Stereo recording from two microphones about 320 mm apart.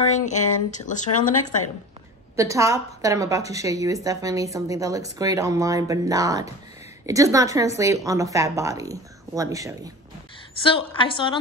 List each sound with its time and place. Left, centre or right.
0.1 s speech: left
2.3 s a woman's voice: centre
10.6 s a woman's voice: centre